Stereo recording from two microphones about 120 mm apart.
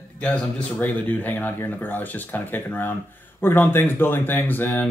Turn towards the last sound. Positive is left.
turn(degrees=15)  # may be behind; listen again after turning